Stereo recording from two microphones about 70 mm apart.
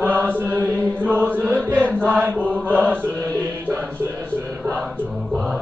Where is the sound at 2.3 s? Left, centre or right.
Left.